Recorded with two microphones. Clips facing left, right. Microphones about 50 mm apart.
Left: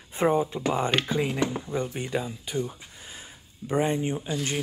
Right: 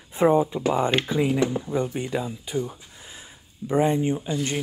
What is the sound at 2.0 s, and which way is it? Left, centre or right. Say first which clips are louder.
Speech: right 2 dB; right.